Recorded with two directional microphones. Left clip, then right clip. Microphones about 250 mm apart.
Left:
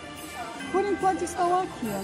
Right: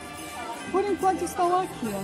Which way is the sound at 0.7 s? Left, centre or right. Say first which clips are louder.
Even; centre.